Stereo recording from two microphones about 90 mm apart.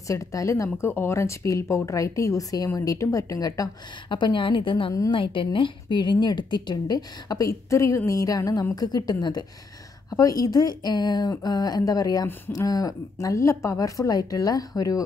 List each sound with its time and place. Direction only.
0.1 s speech: 35° left (ahead or behind)
4.1 s a woman's voice: 60° left (ahead or behind); by 15.0 s 40° left (ahead or behind)